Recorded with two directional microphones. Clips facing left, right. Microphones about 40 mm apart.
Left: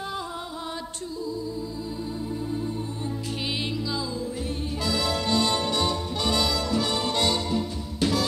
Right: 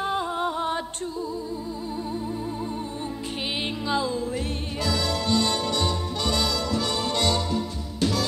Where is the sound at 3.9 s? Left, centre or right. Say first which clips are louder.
Right 5 dB; right.